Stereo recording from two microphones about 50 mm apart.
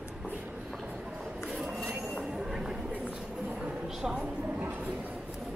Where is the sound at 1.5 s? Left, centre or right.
Centre.